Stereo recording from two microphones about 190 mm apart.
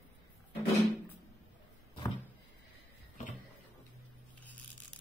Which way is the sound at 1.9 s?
25° left (ahead or behind).